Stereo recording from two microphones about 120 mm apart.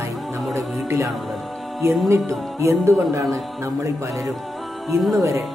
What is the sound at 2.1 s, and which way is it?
Music, 25° right (ahead or behind).